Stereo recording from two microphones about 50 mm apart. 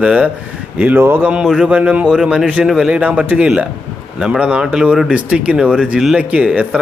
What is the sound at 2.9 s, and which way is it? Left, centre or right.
Speech, right.